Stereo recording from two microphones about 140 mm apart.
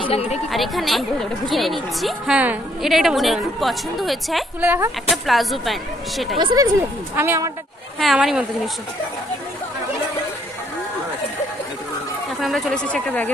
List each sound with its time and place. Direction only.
0.0 s speech: 45° left (ahead or behind)
0.5 s a woman's voice: centre (ahead or behind)
6.4 s speech: 25° right (ahead or behind)
8.0 s a woman's voice: centre (ahead or behind)
12.4 s speech: centre (ahead or behind)